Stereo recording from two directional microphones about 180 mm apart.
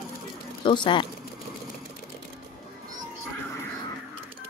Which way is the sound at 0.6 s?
25° left (ahead or behind).